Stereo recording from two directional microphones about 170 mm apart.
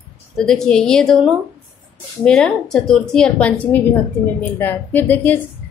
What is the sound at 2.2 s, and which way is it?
A woman's voice, 5° left (ahead or behind).